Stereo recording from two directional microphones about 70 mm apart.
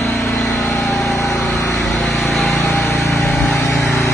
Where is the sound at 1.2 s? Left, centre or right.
Centre.